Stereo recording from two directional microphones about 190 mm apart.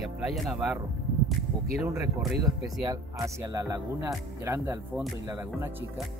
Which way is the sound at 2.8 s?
20° right (ahead or behind).